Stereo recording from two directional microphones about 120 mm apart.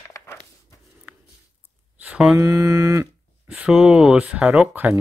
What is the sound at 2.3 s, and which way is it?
Speech, 30° right (ahead or behind).